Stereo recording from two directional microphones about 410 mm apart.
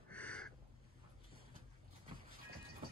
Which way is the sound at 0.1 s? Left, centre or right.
Centre.